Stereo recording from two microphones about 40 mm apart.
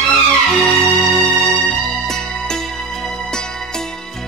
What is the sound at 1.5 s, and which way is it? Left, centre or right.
Music, centre.